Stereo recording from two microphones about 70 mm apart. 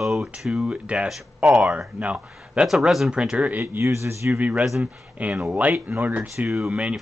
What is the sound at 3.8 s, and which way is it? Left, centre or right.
Speech, right.